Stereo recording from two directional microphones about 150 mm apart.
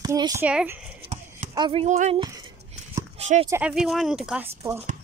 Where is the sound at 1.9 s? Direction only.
55° right (ahead or behind).